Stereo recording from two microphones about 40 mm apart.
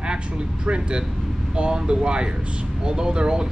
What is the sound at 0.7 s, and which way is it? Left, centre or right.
Speech, right.